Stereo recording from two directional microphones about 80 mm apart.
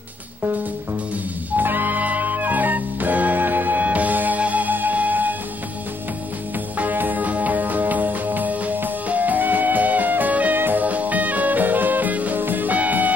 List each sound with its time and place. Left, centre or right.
1.6 s music: right
6.8 s music: right